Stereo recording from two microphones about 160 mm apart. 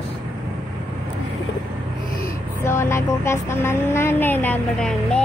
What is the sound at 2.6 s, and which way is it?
Speech, 15° left (ahead or behind).